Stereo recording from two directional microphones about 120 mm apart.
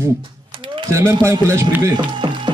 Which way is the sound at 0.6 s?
40° right (ahead or behind).